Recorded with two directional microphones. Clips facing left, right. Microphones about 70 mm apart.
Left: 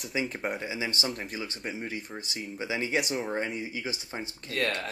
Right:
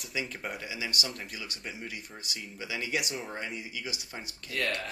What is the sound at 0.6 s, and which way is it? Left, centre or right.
Speech, left.